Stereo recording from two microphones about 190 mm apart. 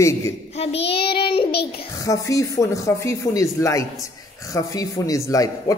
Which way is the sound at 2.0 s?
15° left (ahead or behind).